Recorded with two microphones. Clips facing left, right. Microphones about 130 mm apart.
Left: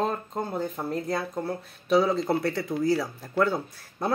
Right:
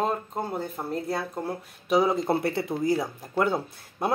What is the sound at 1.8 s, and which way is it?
Speech, 15° right (ahead or behind).